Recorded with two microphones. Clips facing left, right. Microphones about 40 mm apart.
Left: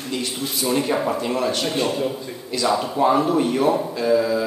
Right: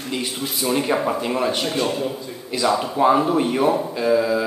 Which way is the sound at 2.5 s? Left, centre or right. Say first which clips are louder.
Right 1 dB; centre.